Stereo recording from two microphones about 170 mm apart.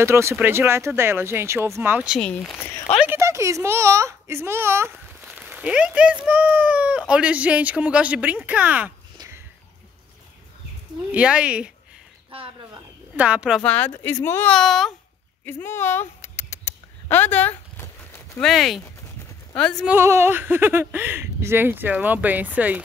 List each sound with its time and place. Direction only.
0.0 s speech: 15° right (ahead or behind)
2.1 s speech: 5° left (ahead or behind)
3.1 s speech: 15° right (ahead or behind)
5.2 s a sound: 10° right (ahead or behind)
6.2 s speech: 10° right (ahead or behind)
9.2 s a sound: 25° right (ahead or behind)
11.1 s speech: 5° right (ahead or behind)
12.3 s a sound: 30° right (ahead or behind)
13.1 s speech: 5° right (ahead or behind)
13.6 s speech: 10° left (ahead or behind)
14.5 s speech: centre (ahead or behind)
15.4 s a sound: 15° left (ahead or behind)
18.4 s speech: centre (ahead or behind)
19.9 s speech: 15° right (ahead or behind)